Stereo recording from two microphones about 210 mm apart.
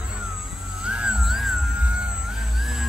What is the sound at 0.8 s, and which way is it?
Music, 5° right (ahead or behind).